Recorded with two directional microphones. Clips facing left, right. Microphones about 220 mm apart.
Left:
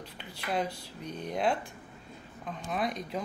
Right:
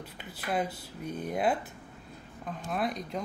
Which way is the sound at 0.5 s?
5° right (ahead or behind).